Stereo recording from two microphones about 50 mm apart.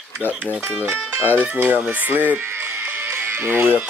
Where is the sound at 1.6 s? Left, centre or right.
Right.